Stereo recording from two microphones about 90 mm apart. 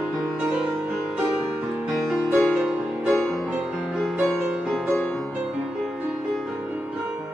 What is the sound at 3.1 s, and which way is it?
Music, 5° left (ahead or behind).